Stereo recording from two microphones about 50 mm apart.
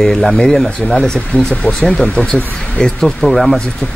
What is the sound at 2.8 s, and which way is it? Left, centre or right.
Speech, centre.